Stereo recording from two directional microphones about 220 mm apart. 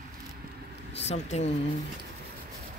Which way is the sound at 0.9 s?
30° left (ahead or behind).